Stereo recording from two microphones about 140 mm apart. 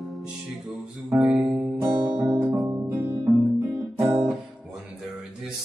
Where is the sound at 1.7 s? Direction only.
30° right (ahead or behind).